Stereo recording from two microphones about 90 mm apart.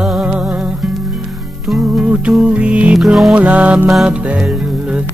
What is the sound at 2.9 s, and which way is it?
Music, centre (ahead or behind).